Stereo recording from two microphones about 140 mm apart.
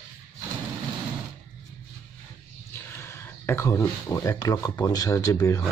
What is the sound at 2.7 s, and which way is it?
Speech, 15° left (ahead or behind).